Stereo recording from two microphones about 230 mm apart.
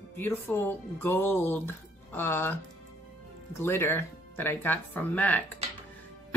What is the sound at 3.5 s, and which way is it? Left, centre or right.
Speech, centre.